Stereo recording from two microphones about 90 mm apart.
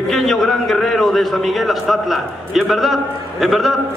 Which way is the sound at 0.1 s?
5° left (ahead or behind).